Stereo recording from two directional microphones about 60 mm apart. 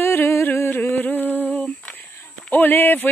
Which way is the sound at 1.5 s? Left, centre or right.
Left.